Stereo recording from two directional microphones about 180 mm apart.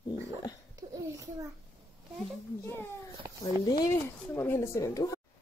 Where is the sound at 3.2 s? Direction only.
15° right (ahead or behind).